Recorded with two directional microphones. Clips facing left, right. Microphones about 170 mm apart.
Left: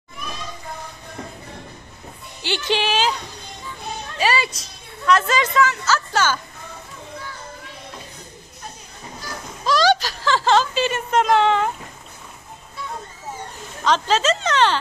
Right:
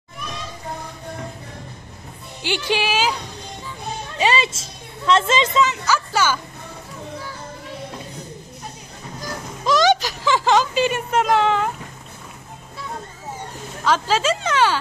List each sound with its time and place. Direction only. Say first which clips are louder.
2.4 s speech: even; 10° right (ahead or behind)
4.2 s a woman's voice: right 1 dB; 20° right (ahead or behind)
9.7 s a sound: right 1 dB; 20° right (ahead or behind)
13.8 s speech: even; 10° right (ahead or behind)